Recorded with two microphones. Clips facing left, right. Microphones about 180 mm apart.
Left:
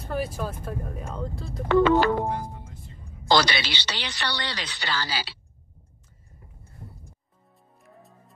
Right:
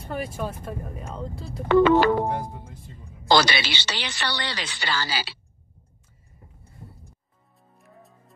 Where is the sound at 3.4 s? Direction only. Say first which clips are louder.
Right 2 dB; 10° right (ahead or behind).